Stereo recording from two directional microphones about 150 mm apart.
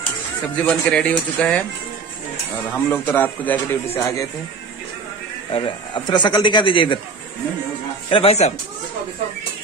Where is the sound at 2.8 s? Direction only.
15° left (ahead or behind).